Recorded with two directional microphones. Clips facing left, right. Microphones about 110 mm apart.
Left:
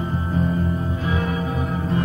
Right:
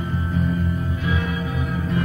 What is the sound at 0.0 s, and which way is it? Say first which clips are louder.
Music: left 1 dB; 30° left (ahead or behind).